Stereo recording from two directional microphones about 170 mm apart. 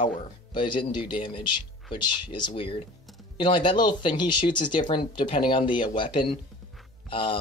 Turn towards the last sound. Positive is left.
turn(degrees=30)  # may be behind; listen again after turning